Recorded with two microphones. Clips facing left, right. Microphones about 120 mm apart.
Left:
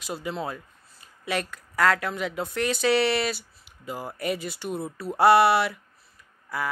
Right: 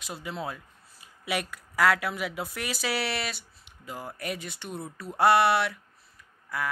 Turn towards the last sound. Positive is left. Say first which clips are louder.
# left 2 dB
turn(degrees=0)  # may be behind; listen again after turning